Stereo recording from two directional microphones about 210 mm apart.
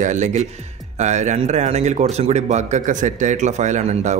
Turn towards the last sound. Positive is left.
turn(degrees=-30)  # may be behind; listen again after turning